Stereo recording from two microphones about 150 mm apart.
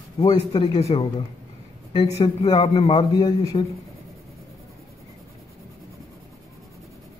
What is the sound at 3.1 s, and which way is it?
Speech, 25° left (ahead or behind).